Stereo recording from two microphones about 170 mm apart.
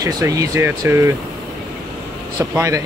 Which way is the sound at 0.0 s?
20° right (ahead or behind).